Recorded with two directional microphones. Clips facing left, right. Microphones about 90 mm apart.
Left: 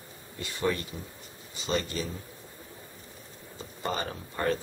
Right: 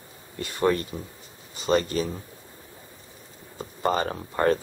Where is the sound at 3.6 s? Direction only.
45° right (ahead or behind).